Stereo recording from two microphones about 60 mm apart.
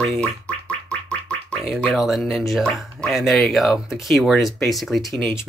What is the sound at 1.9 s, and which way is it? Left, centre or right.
Speech, centre.